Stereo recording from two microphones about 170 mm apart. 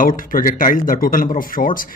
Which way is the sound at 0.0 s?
55° left (ahead or behind).